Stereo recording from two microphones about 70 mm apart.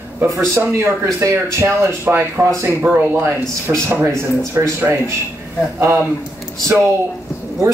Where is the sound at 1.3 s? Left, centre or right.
Right.